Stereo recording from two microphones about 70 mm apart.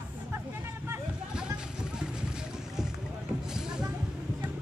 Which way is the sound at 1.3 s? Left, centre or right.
Centre.